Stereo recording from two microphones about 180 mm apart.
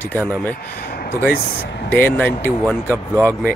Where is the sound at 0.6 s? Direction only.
60° left (ahead or behind).